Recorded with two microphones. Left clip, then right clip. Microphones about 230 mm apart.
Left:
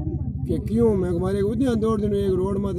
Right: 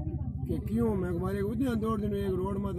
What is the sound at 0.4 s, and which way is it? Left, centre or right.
Speech, centre.